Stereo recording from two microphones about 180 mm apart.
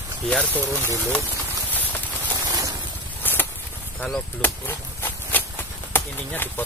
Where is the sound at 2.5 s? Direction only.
20° right (ahead or behind).